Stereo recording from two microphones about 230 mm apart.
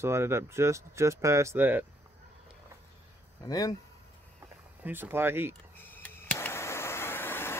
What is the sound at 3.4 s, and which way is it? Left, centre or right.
Speech, centre.